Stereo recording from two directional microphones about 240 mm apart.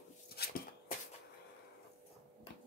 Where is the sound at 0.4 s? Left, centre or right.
Left.